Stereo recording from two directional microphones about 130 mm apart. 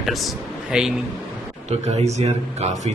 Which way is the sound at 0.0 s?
Centre (ahead or behind).